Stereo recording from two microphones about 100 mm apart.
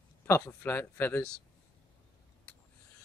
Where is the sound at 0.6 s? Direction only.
20° left (ahead or behind).